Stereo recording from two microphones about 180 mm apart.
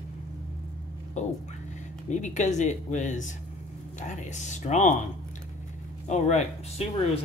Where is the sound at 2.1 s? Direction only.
40° left (ahead or behind).